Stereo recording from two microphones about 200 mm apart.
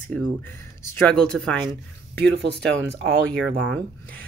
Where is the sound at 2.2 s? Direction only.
60° right (ahead or behind).